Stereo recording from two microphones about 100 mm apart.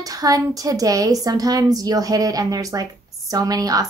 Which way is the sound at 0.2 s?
35° right (ahead or behind).